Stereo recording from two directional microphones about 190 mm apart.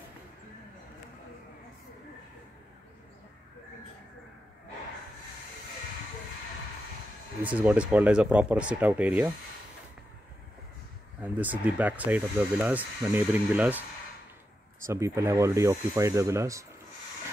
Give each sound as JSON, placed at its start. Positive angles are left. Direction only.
{"t": 7.4, "sound": "speech", "side_deg": -5}
{"t": 11.1, "sound": "speech", "side_deg": -10}
{"t": 14.9, "sound": "speech", "side_deg": -15}